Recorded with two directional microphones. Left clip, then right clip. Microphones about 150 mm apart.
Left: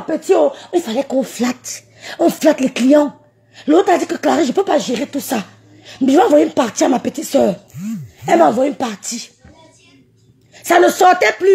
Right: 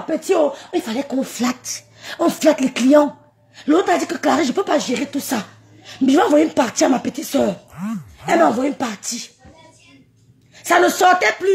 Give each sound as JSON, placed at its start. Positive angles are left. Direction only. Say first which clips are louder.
{"t": 0.7, "sound": "speech", "louder": "left 5 dB", "side_deg": 35}
{"t": 3.5, "sound": "speech", "louder": "left 4 dB", "side_deg": 30}
{"t": 10.5, "sound": "speech", "louder": "left 3 dB", "side_deg": 35}